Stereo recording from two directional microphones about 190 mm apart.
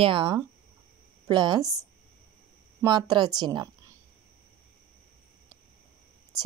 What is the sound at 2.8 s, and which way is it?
Speech, 25° right (ahead or behind).